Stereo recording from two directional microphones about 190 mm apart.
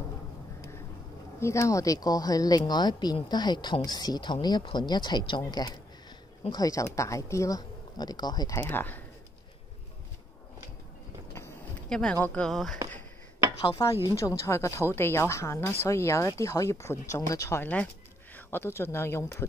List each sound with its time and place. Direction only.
1.4 s speech: 15° left (ahead or behind)
11.3 s a sound: 10° left (ahead or behind)
14.0 s speech: 15° left (ahead or behind)